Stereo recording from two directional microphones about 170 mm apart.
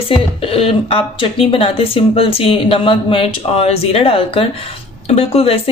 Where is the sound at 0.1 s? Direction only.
30° left (ahead or behind).